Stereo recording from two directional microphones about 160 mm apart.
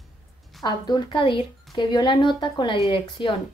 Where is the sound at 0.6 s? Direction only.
25° left (ahead or behind).